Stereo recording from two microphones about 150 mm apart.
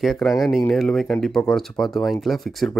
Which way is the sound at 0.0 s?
Centre (ahead or behind).